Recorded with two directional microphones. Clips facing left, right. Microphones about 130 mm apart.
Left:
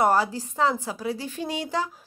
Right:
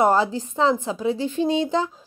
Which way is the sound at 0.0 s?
20° right (ahead or behind).